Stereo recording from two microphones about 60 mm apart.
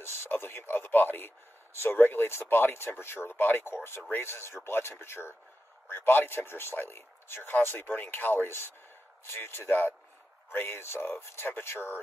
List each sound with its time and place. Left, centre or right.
0.0 s a man's voice: left